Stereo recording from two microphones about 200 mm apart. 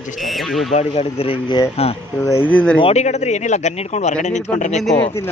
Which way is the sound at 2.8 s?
35° left (ahead or behind).